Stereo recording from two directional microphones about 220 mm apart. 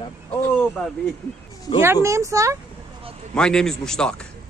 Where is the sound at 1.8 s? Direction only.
10° right (ahead or behind).